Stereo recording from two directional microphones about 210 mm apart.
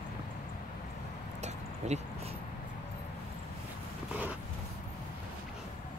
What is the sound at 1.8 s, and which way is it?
Speech, 35° right (ahead or behind).